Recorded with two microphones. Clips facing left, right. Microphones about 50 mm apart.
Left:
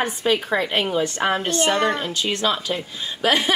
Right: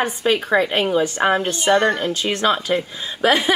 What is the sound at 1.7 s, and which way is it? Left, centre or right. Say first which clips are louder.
A woman's voice: right 7 dB; right.